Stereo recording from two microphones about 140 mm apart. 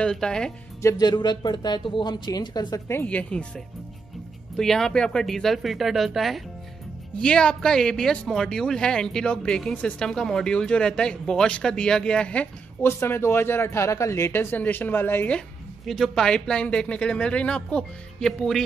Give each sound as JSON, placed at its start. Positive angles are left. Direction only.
{"t": 0.0, "sound": "speech", "side_deg": 5}
{"t": 0.8, "sound": "a woman's voice", "side_deg": 30}
{"t": 2.9, "sound": "speech", "side_deg": 15}